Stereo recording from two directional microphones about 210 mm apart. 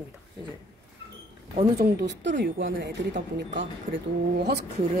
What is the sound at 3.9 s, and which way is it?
Speech, 50° right (ahead or behind).